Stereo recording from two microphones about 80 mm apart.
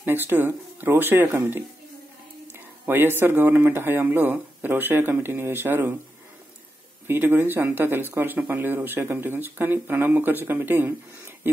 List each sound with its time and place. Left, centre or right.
0.0 s speech: right
2.9 s speech: right
7.1 s speech: right